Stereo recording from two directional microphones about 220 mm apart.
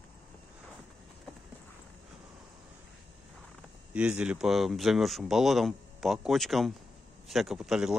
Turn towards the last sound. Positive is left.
turn(degrees=-5)  # may be behind; listen again after turning